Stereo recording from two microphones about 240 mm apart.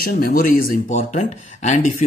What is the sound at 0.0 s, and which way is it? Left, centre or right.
Speech, left.